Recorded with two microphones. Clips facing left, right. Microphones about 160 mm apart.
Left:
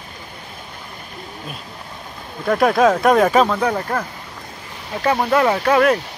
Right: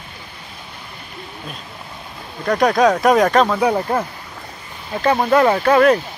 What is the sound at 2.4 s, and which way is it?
Speech, 5° left (ahead or behind).